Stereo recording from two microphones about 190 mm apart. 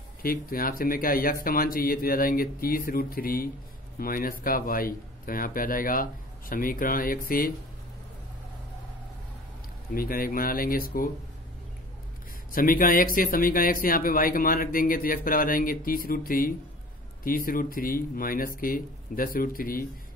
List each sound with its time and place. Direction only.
0.2 s speech: 50° left (ahead or behind)
9.9 s speech: 50° left (ahead or behind)
12.5 s speech: 45° left (ahead or behind)